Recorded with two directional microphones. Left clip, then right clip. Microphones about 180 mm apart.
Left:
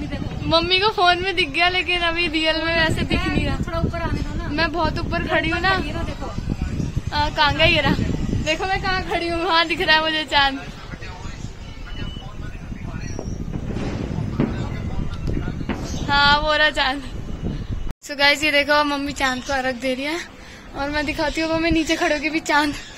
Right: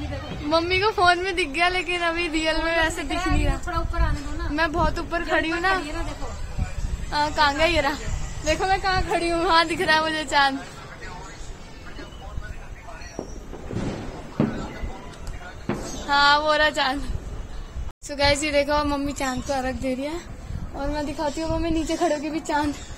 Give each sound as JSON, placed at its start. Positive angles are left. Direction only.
{"t": 0.5, "sound": "a woman's voice", "side_deg": 0}
{"t": 3.6, "sound": "a woman's voice", "side_deg": 0}
{"t": 4.6, "sound": "a woman's voice", "side_deg": 15}
{"t": 5.7, "sound": "a woman's voice", "side_deg": 0}
{"t": 7.1, "sound": "a woman's voice", "side_deg": 0}
{"t": 16.1, "sound": "a woman's voice", "side_deg": 0}
{"t": 18.1, "sound": "a woman's voice", "side_deg": 0}
{"t": 20.8, "sound": "a woman's voice", "side_deg": 15}